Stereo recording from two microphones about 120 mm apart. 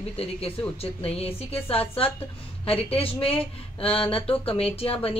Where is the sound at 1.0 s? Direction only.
55° left (ahead or behind).